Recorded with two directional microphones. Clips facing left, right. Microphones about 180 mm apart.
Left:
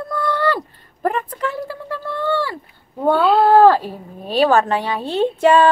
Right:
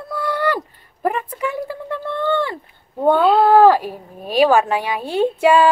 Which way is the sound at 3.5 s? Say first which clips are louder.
Left 2 dB; 15° right (ahead or behind).